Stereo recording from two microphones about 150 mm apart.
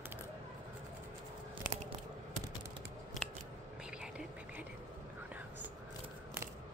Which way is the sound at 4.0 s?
5° right (ahead or behind).